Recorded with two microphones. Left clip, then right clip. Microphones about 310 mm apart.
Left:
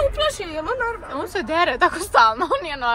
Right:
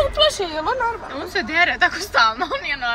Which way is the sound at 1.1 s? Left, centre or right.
Centre.